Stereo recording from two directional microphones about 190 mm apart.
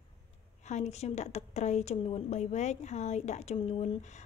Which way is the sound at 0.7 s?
35° left (ahead or behind).